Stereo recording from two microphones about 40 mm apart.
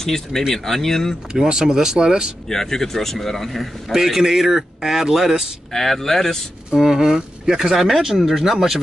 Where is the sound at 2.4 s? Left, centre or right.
Centre.